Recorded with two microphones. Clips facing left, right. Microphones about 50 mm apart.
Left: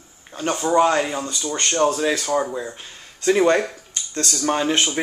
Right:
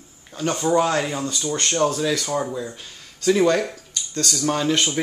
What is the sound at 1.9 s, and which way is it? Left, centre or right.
Speech, left.